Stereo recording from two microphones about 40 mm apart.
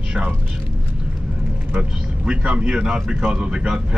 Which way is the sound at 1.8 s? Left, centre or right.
Right.